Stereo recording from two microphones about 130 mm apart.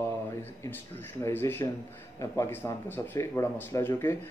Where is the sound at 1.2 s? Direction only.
15° left (ahead or behind).